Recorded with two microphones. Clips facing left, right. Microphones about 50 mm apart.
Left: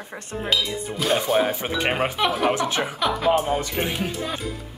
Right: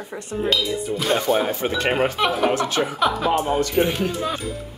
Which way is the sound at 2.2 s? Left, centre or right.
Centre.